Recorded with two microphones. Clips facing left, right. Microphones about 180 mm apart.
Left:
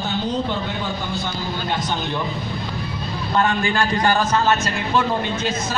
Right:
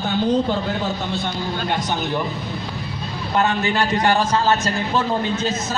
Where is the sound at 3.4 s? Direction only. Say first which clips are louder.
Even; 25° right (ahead or behind).